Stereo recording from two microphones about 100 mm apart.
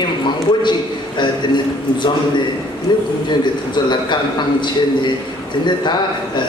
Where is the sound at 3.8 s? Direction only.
50° left (ahead or behind).